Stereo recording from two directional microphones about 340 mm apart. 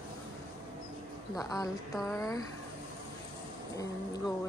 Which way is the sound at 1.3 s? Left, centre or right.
Centre.